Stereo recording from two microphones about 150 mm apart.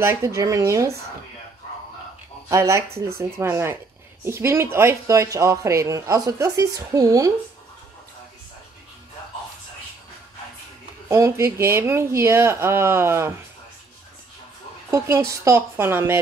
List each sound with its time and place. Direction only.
0.0 s speech: 20° right (ahead or behind)
2.5 s speech: 20° right (ahead or behind)
11.1 s speech: 20° right (ahead or behind)
14.9 s speech: 20° right (ahead or behind)